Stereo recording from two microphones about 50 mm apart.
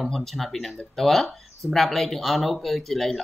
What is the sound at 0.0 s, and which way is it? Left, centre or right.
Speech, centre.